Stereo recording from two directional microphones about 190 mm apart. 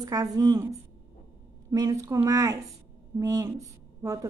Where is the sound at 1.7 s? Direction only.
20° right (ahead or behind).